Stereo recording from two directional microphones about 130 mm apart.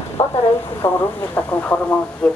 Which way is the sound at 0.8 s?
15° left (ahead or behind).